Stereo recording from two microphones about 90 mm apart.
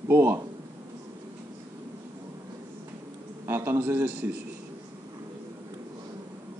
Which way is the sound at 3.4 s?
25° right (ahead or behind).